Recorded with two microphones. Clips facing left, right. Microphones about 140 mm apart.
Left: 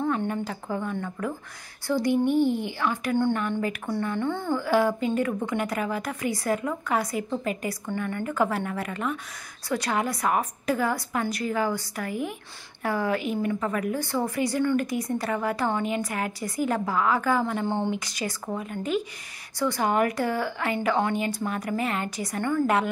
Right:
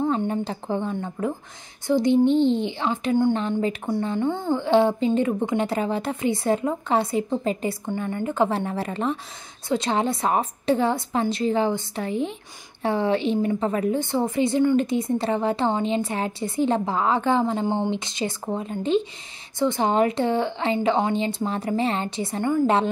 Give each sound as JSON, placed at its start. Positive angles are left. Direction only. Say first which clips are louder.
{"t": 0.0, "sound": "a woman's voice", "louder": "right 3 dB", "side_deg": -20}